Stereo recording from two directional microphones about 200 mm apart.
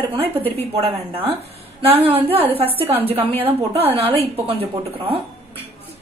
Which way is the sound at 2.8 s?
10° right (ahead or behind).